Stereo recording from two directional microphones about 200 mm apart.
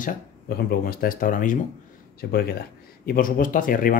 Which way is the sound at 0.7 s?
45° left (ahead or behind).